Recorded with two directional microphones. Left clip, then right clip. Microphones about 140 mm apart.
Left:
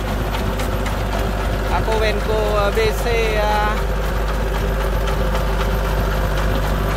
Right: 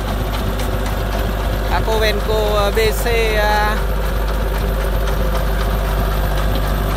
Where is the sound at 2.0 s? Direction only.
25° right (ahead or behind).